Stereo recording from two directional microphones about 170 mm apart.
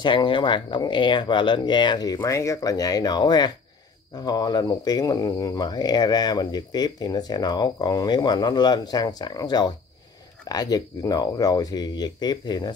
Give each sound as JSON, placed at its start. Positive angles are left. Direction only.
{"t": 0.0, "sound": "speech", "side_deg": 30}